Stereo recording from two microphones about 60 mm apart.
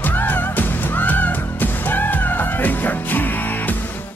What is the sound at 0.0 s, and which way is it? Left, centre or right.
Music, left.